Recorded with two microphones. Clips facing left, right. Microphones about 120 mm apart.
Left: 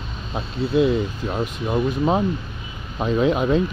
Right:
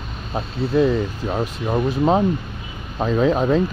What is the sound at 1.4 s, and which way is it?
Speech, 10° right (ahead or behind).